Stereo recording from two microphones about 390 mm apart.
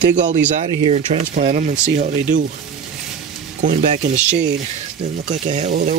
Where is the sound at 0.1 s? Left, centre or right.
Centre.